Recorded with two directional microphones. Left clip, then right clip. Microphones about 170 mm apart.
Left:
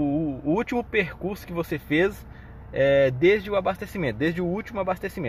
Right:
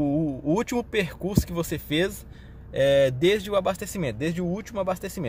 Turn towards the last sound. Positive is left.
turn(degrees=-15)  # may be behind; listen again after turning